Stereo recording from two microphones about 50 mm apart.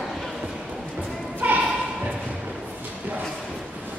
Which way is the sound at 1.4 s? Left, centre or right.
Right.